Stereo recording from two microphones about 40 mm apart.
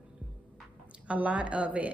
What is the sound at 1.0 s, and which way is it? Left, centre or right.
Speech, right.